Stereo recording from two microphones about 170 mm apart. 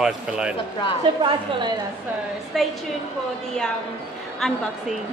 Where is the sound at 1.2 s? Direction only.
30° right (ahead or behind).